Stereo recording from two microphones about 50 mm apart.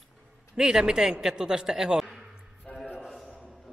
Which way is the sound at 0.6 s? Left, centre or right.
Centre.